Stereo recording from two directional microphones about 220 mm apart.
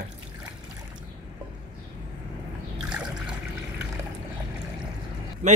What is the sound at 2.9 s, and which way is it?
Trickle, 5° right (ahead or behind).